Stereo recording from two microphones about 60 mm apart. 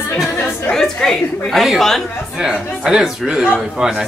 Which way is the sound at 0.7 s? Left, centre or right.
Centre.